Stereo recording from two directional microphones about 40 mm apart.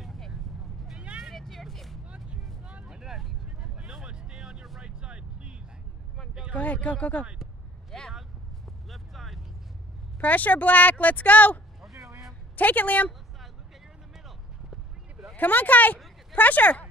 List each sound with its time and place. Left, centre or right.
0.9 s vehicle: right
1.3 s vehicle: centre
2.0 s vehicle: right
6.6 s speech: left
7.9 s a sound: centre
10.2 s speech: left
14.1 s a sound: centre
15.3 s speech: left